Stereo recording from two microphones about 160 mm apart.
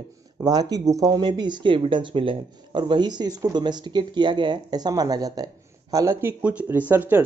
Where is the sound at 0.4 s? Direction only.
25° right (ahead or behind).